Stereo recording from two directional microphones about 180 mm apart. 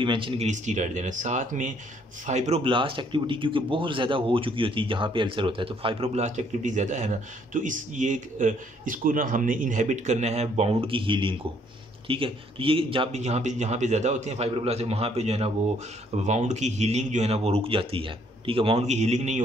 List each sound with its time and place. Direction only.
0.0 s speech: 30° right (ahead or behind)
0.5 s speech: 40° right (ahead or behind)